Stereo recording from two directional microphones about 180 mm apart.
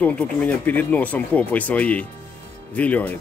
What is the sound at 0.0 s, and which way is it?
Speech, 5° left (ahead or behind).